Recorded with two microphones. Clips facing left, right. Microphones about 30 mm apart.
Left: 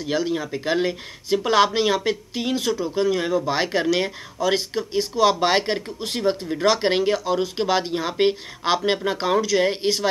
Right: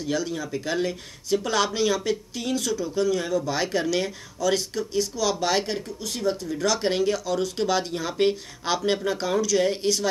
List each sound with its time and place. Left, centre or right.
0.0 s speech: left